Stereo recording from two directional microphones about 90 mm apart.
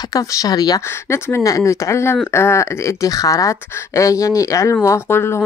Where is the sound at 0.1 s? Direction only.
40° left (ahead or behind).